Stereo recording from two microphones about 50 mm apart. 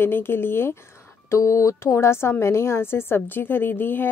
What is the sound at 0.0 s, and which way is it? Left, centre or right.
Speech, left.